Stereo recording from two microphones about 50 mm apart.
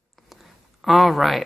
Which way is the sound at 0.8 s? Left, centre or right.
Centre.